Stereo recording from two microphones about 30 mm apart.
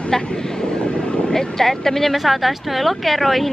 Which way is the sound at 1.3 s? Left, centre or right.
Centre.